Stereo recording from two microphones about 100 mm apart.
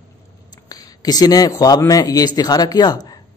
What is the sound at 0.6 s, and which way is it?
Speech, 40° left (ahead or behind).